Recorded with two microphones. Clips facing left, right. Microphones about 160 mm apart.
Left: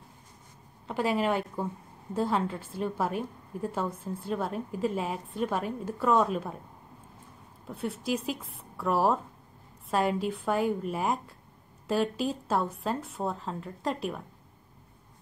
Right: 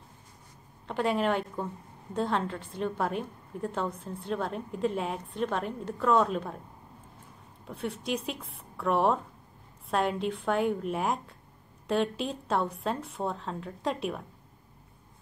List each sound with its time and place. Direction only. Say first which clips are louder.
0.8 s a woman's voice: even; 5° left (ahead or behind)
7.6 s a woman's voice: left 1 dB; centre (ahead or behind)